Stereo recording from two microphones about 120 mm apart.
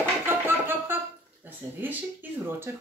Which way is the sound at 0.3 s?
20° right (ahead or behind).